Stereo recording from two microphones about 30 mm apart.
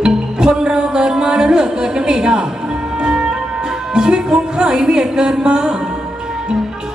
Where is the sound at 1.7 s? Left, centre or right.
Right.